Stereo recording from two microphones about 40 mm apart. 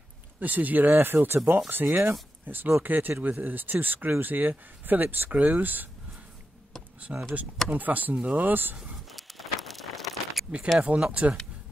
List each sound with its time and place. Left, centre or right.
0.4 s speech: right
1.7 s speech: right
2.4 s speech: right
5.3 s speech: right
7.3 s speech: right
9.1 s a sound: centre
11.0 s speech: right